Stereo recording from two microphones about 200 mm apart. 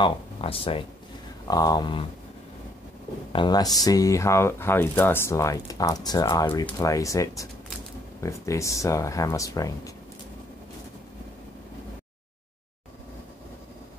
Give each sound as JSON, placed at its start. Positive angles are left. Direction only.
{"t": 0.0, "sound": "speech", "side_deg": 25}
{"t": 3.3, "sound": "speech", "side_deg": 20}